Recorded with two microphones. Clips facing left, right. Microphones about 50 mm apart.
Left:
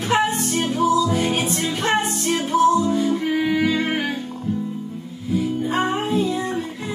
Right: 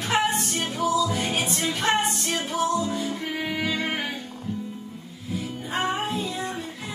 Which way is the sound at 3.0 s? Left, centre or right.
Centre.